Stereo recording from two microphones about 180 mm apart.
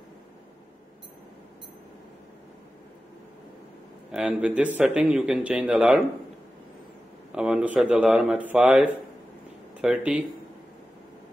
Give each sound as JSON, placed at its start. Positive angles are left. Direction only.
{"t": 4.1, "sound": "speech", "side_deg": -5}
{"t": 7.3, "sound": "speech", "side_deg": -5}